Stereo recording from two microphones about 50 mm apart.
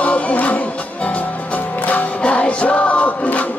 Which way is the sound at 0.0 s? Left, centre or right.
Left.